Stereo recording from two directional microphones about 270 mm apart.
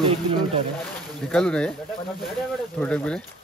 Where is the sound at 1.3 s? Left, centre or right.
Centre.